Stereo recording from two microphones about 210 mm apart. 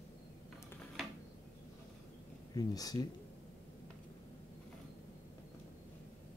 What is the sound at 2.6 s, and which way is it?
Speech, 20° left (ahead or behind).